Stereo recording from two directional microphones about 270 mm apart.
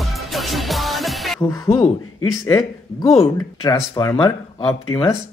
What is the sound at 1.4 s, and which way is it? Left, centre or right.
Speech, centre.